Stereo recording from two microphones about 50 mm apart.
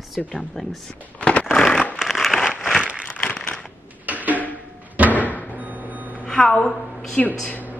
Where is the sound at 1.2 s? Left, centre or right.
Left.